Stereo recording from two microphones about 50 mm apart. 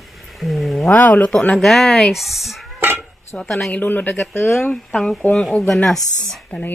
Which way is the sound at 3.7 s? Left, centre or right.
Left.